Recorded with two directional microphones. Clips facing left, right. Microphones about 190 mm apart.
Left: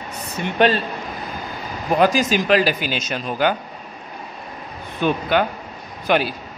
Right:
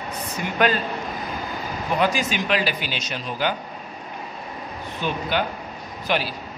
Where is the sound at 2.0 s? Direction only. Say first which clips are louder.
Left 6 dB; 40° left (ahead or behind).